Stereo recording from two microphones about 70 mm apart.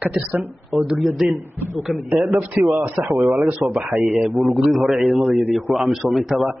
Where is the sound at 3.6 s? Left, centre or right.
Right.